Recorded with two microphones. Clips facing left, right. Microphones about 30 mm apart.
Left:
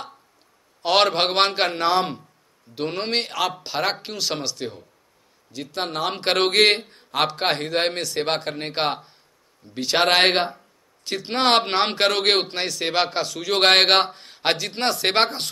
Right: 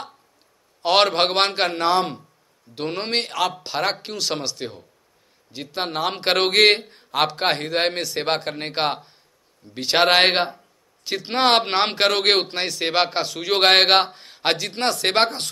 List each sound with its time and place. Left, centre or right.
0.8 s a man's voice: centre
9.8 s speech: centre
10.0 s a man's voice: centre
12.6 s speech: centre
13.6 s a man's voice: centre